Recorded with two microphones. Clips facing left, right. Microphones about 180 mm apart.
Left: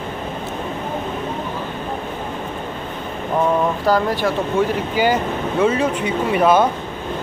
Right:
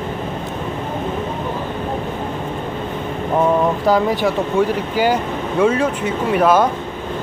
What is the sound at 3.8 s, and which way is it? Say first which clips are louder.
Speech: right 2 dB; 15° right (ahead or behind).